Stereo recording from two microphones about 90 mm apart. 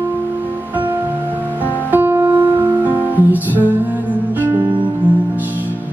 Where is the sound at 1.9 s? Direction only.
25° right (ahead or behind).